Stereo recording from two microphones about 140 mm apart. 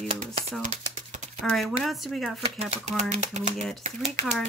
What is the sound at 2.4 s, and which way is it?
Speech, 45° right (ahead or behind).